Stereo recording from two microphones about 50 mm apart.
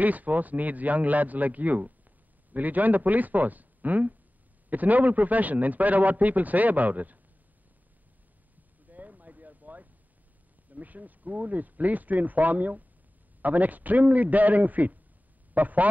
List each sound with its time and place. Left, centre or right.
0.0 s a man's voice: right
8.8 s a sound: right
10.7 s a man's voice: right